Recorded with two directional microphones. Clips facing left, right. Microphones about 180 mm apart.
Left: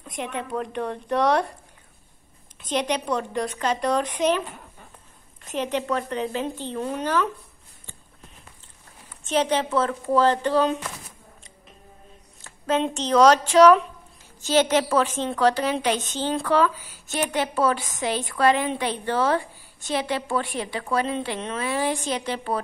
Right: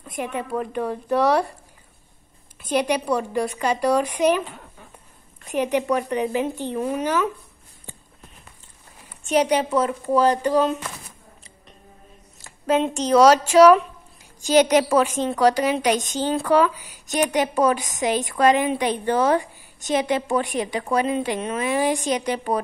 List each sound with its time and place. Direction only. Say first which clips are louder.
0.0 s a woman's voice: right 3 dB; 5° right (ahead or behind)
2.6 s a woman's voice: right 3 dB; 10° right (ahead or behind)
5.5 s a woman's voice: right 4 dB; 15° right (ahead or behind)
9.2 s a woman's voice: right 3 dB; 10° right (ahead or behind)
12.4 s a woman's voice: right 3 dB; 10° right (ahead or behind)